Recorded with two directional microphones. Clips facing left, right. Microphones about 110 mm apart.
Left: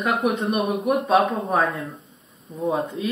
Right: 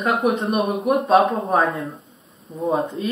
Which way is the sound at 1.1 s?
Centre (ahead or behind).